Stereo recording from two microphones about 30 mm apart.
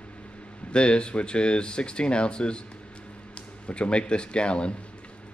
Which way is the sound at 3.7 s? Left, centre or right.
Left.